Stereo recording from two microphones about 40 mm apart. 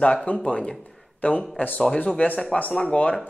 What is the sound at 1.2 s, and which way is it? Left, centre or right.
Speech, left.